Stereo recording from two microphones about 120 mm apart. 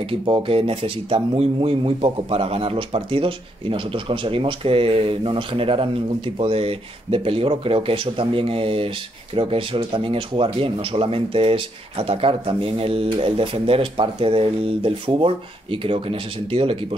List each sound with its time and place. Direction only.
0.2 s speech: 45° right (ahead or behind)